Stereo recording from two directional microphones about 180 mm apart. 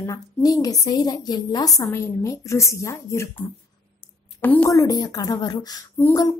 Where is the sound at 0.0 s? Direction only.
20° left (ahead or behind).